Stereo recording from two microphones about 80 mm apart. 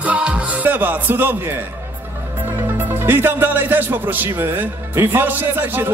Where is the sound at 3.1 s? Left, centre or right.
Right.